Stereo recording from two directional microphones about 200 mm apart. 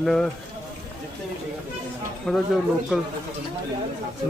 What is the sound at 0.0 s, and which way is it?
Speech, centre (ahead or behind).